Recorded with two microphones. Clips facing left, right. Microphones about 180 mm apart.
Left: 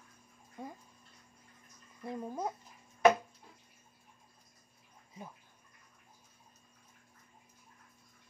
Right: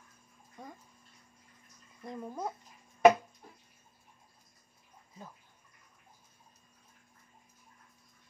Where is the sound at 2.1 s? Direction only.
15° left (ahead or behind).